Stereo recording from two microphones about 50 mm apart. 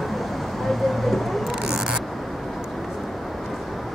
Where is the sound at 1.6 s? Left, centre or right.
Centre.